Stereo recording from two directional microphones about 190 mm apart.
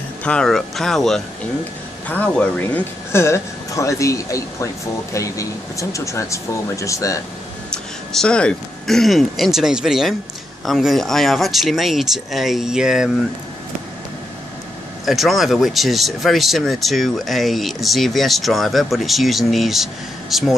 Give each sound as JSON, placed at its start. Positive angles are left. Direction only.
{"t": 0.2, "sound": "speech", "side_deg": 5}
{"t": 7.7, "sound": "speech", "side_deg": 5}
{"t": 15.0, "sound": "speech", "side_deg": 0}